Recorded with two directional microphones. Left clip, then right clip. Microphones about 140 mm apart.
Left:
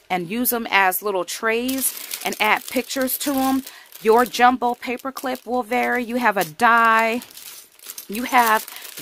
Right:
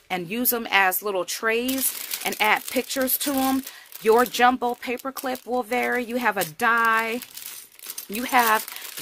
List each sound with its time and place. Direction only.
0.1 s speech: 30° left (ahead or behind)